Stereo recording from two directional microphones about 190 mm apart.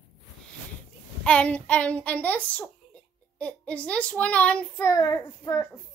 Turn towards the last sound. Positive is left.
turn(degrees=15)  # may be behind; listen again after turning